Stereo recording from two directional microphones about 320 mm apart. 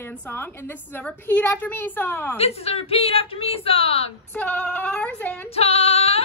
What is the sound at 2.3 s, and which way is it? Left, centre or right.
A woman's voice, centre.